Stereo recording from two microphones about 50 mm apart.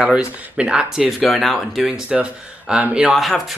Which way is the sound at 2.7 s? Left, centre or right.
Right.